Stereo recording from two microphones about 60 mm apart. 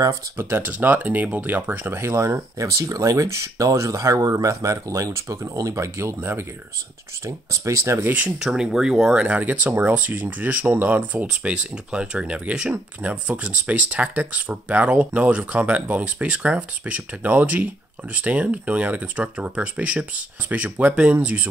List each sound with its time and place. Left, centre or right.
0.4 s speech: right
2.0 s speech: right
7.2 s speech: right
8.4 s speech: centre
9.1 s speech: right
11.2 s speech: centre